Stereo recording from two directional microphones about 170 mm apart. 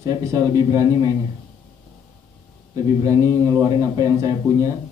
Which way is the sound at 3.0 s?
20° right (ahead or behind).